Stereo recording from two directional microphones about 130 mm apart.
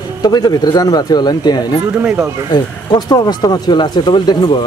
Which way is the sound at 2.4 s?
35° left (ahead or behind).